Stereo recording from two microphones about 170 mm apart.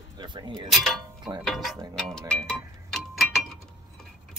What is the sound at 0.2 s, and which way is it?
Speech, 25° right (ahead or behind).